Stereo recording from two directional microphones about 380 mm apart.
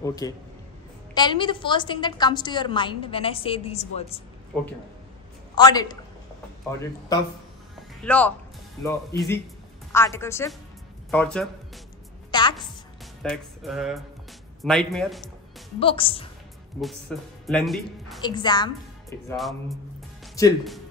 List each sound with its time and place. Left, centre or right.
0.0 s a man's voice: centre
5.5 s a man's voice: centre
8.0 s a woman's voice: centre
12.3 s music: centre
13.2 s speech: centre
15.8 s a woman's voice: centre
17.1 s speech: centre
18.2 s a woman's voice: centre